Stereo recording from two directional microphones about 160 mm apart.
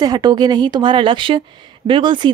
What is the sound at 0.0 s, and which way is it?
Speech, 25° right (ahead or behind).